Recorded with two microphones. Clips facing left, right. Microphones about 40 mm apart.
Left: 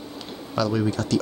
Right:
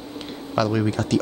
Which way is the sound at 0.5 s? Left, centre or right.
Right.